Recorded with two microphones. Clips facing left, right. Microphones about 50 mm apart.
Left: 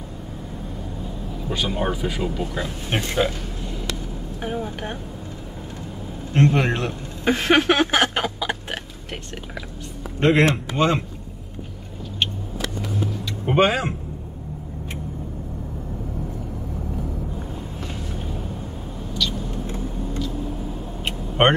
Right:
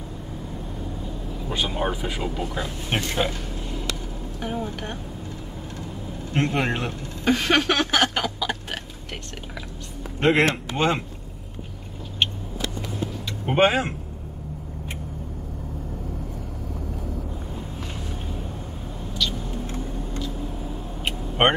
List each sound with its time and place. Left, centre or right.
1.7 s speech: centre
2.6 s speech: centre
4.4 s speech: centre
6.3 s speech: centre
6.9 s speech: centre
10.2 s speech: centre
13.6 s speech: centre
21.0 s vehicle: centre